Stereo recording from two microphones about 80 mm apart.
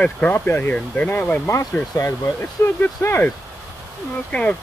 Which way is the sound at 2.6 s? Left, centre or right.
Left.